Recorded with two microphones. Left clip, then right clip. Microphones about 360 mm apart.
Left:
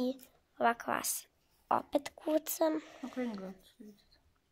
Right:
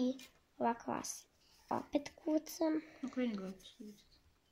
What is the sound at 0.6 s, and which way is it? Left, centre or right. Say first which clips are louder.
Speech: left 6 dB; left.